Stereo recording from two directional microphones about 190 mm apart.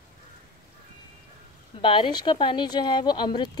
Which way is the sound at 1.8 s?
25° left (ahead or behind).